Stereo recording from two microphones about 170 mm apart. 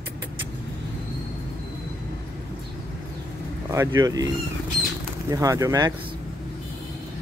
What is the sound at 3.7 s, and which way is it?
Speech, 20° right (ahead or behind).